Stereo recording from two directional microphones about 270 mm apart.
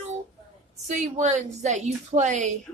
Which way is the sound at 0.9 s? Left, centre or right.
Right.